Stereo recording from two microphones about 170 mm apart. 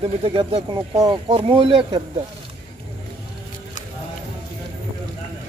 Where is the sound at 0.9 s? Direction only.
20° right (ahead or behind).